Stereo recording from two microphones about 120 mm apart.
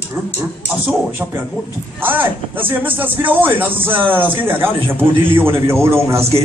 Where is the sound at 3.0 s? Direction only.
15° right (ahead or behind).